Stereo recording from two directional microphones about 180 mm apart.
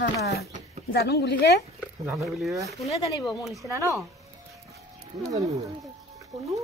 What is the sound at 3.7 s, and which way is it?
Speech, 15° right (ahead or behind).